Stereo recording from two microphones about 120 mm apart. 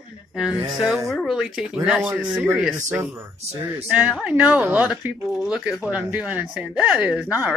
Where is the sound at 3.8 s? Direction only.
10° right (ahead or behind).